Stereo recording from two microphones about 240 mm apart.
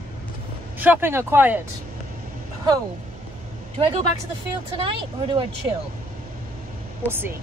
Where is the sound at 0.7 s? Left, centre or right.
Centre.